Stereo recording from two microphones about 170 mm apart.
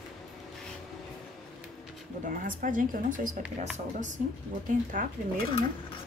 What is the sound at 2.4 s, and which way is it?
Speech, 55° right (ahead or behind).